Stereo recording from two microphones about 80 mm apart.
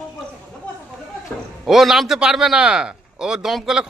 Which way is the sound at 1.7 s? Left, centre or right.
Centre.